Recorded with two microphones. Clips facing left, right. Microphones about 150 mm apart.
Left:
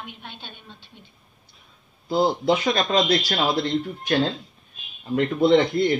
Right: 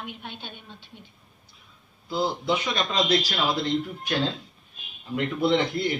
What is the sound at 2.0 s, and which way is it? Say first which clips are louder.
Speech: left 6 dB; 50° left (ahead or behind).